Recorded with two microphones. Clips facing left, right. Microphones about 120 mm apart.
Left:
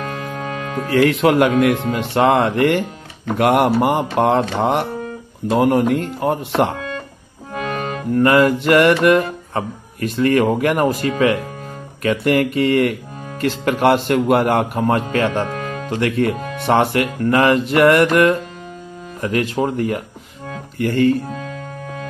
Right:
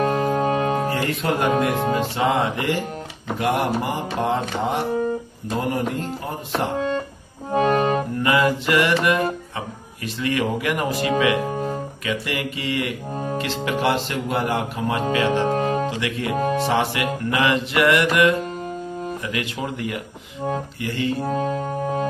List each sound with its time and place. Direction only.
0.0 s music: 35° right (ahead or behind)
0.9 s speech: 90° left
2.0 s speech: 60° left (ahead or behind)
7.5 s music: 35° right (ahead or behind)
8.2 s a sound: 55° left (ahead or behind)
13.4 s speech: 50° left (ahead or behind)
15.1 s a sound: 50° left (ahead or behind)
15.4 s music: 35° right (ahead or behind)
15.9 s a sound: 50° left (ahead or behind)
19.2 s speech: 40° left (ahead or behind)
20.8 s a sound: 50° left (ahead or behind)
21.2 s music: 40° right (ahead or behind)